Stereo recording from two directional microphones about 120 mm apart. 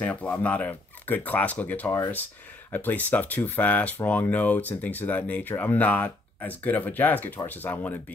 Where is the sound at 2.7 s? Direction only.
15° left (ahead or behind).